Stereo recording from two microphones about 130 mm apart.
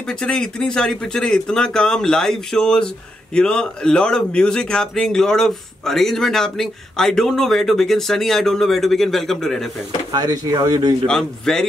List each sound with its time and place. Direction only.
0.0 s speech: 5° left (ahead or behind)
10.1 s speech: 30° right (ahead or behind)
11.1 s speech: 5° left (ahead or behind)